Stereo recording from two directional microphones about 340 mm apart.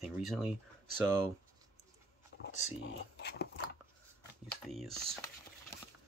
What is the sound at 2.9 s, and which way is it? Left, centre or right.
Speech, left.